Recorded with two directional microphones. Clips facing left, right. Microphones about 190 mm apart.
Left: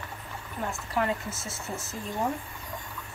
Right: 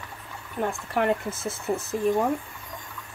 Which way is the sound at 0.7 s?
60° right (ahead or behind).